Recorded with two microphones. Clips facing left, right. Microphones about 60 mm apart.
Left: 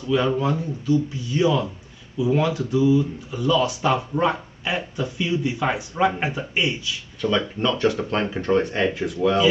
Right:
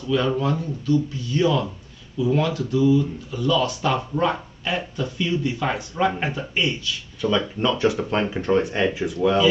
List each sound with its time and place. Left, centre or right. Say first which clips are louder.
0.1 s speech: left 1 dB; centre
7.2 s speech: even; centre